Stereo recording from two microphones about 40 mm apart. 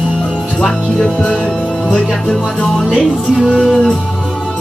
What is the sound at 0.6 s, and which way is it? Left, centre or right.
Music, centre.